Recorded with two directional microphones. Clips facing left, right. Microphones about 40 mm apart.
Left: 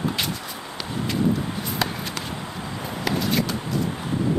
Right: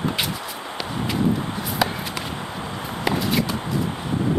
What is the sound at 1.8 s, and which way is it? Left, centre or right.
Walk, centre.